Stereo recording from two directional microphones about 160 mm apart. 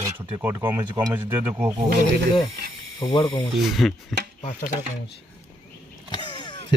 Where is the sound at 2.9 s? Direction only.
25° left (ahead or behind).